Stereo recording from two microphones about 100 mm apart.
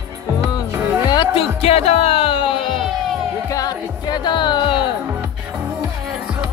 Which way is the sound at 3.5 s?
40° left (ahead or behind).